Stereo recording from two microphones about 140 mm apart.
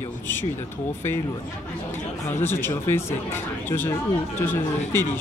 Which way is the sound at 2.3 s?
15° left (ahead or behind).